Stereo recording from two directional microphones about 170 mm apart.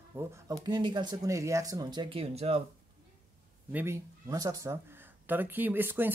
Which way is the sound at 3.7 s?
15° right (ahead or behind).